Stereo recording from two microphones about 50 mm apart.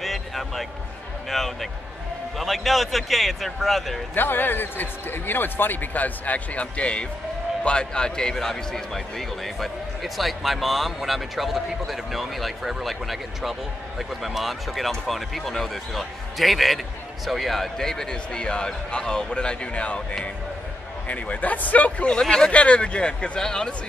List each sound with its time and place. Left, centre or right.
0.0 s basketball bounce: centre
1.3 s a man's voice: centre
4.1 s a man's voice: left
22.2 s speech: centre
22.5 s speech: left